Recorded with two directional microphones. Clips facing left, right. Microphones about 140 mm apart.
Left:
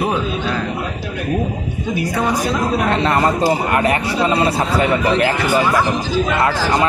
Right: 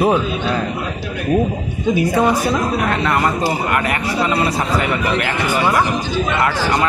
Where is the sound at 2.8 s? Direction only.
30° left (ahead or behind).